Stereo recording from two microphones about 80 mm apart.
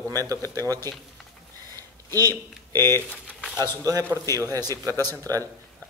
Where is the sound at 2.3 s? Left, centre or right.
Left.